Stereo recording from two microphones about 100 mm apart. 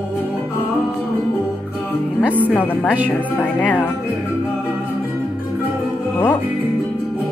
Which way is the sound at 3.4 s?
15° left (ahead or behind).